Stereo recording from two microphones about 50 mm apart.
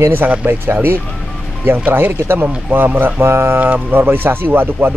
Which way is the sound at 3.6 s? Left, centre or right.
Right.